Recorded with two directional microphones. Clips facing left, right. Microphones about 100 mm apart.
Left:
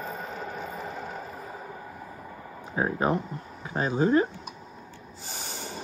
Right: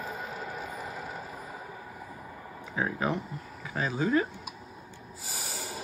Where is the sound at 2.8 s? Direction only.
35° left (ahead or behind).